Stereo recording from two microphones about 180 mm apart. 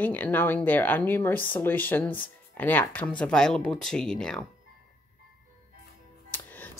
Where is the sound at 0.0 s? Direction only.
10° left (ahead or behind).